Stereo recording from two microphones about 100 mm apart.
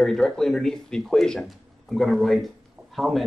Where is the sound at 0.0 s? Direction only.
5° left (ahead or behind).